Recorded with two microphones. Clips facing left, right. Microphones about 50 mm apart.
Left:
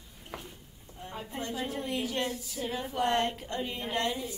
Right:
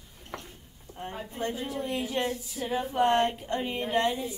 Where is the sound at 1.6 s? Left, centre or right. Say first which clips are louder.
Right 1 dB; left.